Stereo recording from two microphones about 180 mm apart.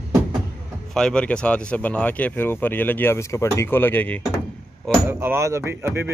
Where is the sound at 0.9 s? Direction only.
5° left (ahead or behind).